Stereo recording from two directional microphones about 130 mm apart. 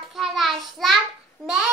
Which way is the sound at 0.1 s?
Centre (ahead or behind).